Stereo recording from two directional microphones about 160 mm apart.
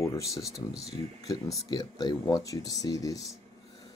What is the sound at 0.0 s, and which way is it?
Speech, 20° left (ahead or behind).